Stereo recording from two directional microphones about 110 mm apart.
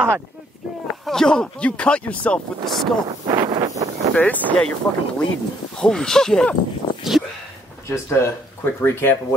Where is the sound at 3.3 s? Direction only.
40° right (ahead or behind).